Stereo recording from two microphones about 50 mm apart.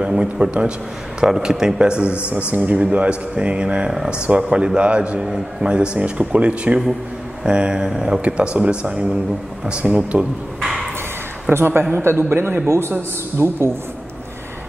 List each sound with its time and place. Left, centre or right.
0.0 s speech: centre
1.2 s a man's voice: centre
5.2 s a man's voice: centre
8.2 s speech: right
10.6 s a sound: centre
11.5 s a man's voice: right
12.6 s a man's voice: right
13.4 s a man's voice: right